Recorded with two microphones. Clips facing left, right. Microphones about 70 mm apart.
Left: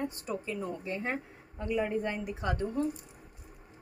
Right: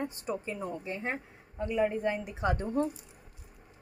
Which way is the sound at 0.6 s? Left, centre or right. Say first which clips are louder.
Even; centre.